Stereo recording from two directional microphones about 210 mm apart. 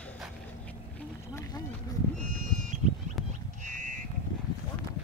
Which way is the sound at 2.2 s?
35° right (ahead or behind).